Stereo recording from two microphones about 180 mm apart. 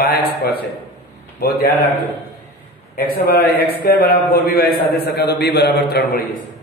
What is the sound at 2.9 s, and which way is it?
A man's voice, 55° left (ahead or behind).